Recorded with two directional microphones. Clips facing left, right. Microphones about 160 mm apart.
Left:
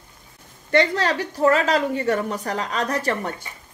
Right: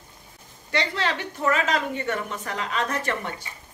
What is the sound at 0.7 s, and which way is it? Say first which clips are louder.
A woman's voice: left 7 dB; 45° left (ahead or behind).